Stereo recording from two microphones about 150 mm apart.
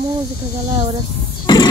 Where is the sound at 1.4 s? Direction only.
30° left (ahead or behind).